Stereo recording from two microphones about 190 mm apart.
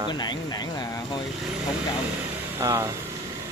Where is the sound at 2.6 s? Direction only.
15° right (ahead or behind).